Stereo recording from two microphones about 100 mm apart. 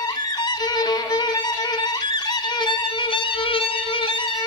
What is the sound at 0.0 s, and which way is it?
Violin, 45° left (ahead or behind).